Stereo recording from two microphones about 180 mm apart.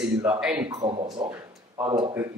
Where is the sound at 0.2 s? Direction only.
5° right (ahead or behind).